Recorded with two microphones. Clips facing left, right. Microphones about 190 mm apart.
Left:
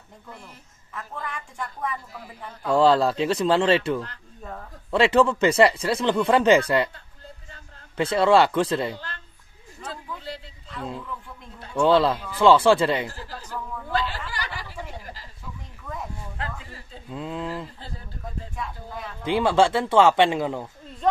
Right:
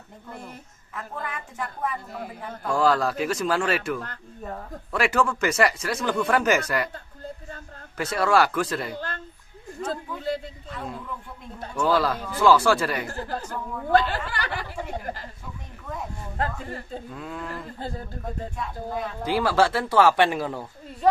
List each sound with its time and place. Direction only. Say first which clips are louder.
0.9 s a woman's voice: right 1 dB; centre (ahead or behind)
2.1 s a man's voice: right 5 dB; 60° right (ahead or behind)
2.7 s speech: left 4 dB; 25° left (ahead or behind)
8.0 s speech: left 4 dB; 25° left (ahead or behind)
9.8 s speech: right 6 dB; 45° right (ahead or behind)
11.8 s speech: left 4 dB; 25° left (ahead or behind)
13.1 s speech: right 8 dB; 55° right (ahead or behind)
13.9 s a sound: right 6 dB; 55° right (ahead or behind)
16.3 s speech: right 10 dB; 50° right (ahead or behind)
17.1 s speech: left 8 dB; 20° left (ahead or behind)
18.6 s a woman's voice: right 4 dB; centre (ahead or behind)
19.2 s speech: left 2 dB; 25° left (ahead or behind)